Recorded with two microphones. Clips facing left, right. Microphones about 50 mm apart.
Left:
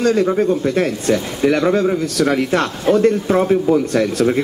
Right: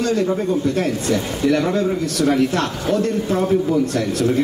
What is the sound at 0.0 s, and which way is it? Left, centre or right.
Speech, left.